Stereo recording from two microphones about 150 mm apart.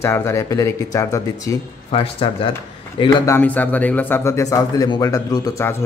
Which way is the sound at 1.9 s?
40° left (ahead or behind).